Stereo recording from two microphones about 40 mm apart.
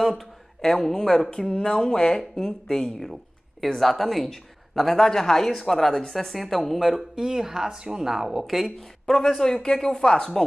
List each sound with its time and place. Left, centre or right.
0.6 s speech: centre
3.6 s speech: centre
8.5 s speech: centre